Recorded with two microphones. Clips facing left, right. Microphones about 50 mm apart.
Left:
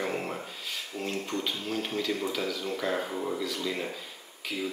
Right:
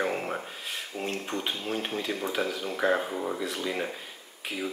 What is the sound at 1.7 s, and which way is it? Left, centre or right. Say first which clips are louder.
Speech: left 1 dB; right.